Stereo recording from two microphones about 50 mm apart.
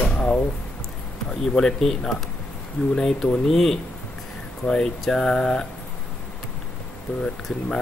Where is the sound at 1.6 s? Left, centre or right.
Centre.